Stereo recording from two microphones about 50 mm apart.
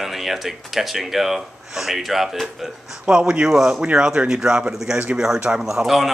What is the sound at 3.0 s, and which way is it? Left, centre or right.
Speech, centre.